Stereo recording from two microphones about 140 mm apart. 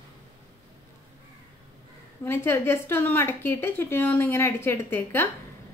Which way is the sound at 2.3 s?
15° left (ahead or behind).